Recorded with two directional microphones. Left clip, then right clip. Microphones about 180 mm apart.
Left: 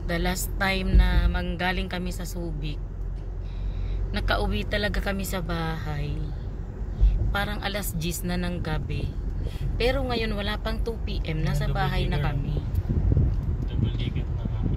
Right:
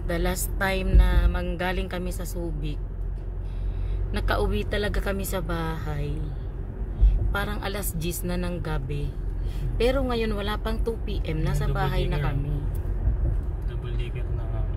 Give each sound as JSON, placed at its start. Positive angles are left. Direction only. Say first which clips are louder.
{"t": 0.1, "sound": "a woman's voice", "louder": "even", "side_deg": -10}
{"t": 4.1, "sound": "a woman's voice", "louder": "even", "side_deg": -15}
{"t": 7.3, "sound": "a woman's voice", "louder": "left 1 dB", "side_deg": -10}